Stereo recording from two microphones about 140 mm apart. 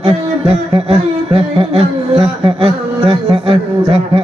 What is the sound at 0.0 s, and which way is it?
Speech, 45° right (ahead or behind).